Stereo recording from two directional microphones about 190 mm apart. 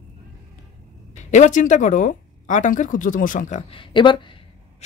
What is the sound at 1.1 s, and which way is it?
Speech, 40° left (ahead or behind).